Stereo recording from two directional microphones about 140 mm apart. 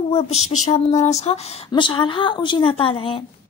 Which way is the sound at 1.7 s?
35° left (ahead or behind).